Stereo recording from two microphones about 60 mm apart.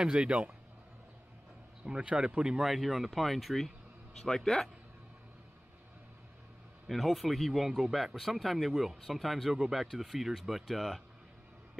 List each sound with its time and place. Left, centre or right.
0.0 s speech: centre
1.9 s speech: centre
6.9 s speech: centre